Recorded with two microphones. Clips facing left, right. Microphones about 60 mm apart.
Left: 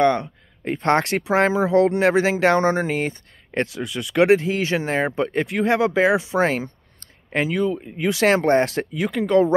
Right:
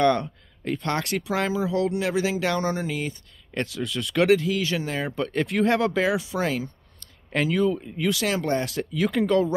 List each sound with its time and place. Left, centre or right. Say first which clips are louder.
0.0 s speech: left 3 dB; centre
0.8 s speech: left 9 dB; left
3.6 s speech: left 1 dB; left
4.3 s speech: left 3 dB; left
5.1 s speech: left 4 dB; left
5.5 s speech: left 1 dB; centre
5.9 s speech: left 6 dB; left
7.4 s speech: right 1 dB; centre
7.8 s speech: left 2 dB; left
8.2 s speech: left 13 dB; left
8.9 s speech: even; centre